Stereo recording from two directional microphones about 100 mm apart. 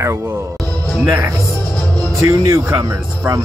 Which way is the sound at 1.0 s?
35° right (ahead or behind).